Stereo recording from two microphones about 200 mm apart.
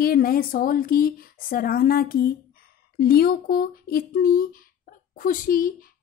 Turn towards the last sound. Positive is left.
turn(degrees=45)  # may be behind; listen again after turning